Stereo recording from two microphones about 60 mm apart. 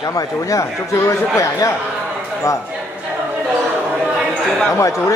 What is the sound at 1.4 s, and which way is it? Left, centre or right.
Speech, left.